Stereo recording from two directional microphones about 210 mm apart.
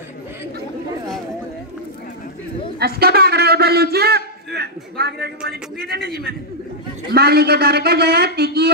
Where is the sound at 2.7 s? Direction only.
45° right (ahead or behind).